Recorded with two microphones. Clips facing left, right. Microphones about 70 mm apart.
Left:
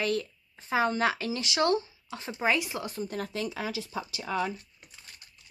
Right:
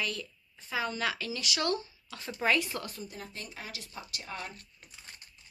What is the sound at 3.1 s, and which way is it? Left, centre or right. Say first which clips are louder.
Speech: left 11 dB; left.